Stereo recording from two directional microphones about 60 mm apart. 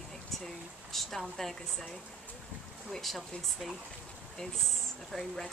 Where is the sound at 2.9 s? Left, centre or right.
Centre.